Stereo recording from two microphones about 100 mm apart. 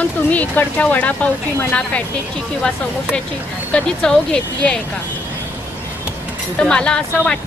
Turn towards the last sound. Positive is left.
turn(degrees=10)  # may be behind; listen again after turning